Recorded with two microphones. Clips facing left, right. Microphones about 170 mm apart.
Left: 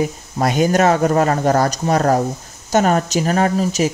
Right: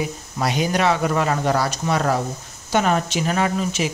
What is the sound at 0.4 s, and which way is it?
Speech, 45° left (ahead or behind).